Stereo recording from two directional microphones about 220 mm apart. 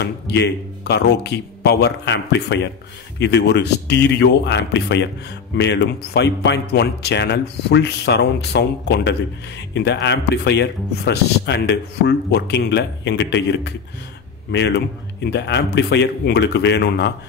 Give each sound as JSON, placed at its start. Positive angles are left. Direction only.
{"t": 0.0, "sound": "speech", "side_deg": 50}